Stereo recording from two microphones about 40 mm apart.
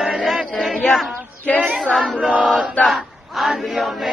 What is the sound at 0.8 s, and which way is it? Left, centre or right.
Speech, centre.